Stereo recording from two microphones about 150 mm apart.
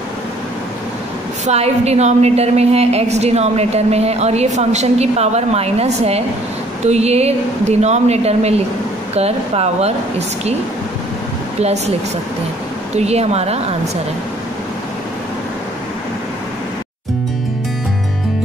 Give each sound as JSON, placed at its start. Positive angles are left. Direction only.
{"t": 1.4, "sound": "a woman's voice", "side_deg": -45}
{"t": 11.6, "sound": "a woman's voice", "side_deg": -45}
{"t": 12.9, "sound": "a woman's voice", "side_deg": -45}